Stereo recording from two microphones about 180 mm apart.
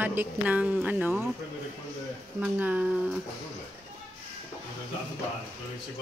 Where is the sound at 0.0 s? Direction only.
10° right (ahead or behind).